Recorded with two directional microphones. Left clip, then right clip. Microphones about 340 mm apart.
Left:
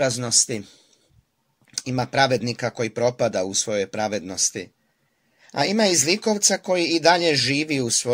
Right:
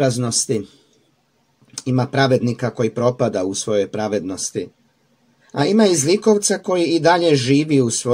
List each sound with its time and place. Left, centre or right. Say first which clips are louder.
0.0 s speech: right 2 dB; centre
1.8 s speech: right 2 dB; left